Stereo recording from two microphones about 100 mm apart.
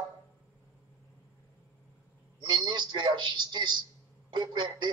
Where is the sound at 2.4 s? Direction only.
50° right (ahead or behind).